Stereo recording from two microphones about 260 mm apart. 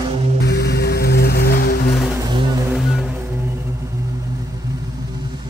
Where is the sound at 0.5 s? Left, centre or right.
Left.